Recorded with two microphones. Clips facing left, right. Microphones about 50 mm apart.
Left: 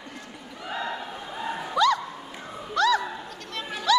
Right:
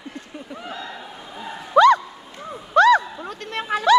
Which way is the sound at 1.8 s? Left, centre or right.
Right.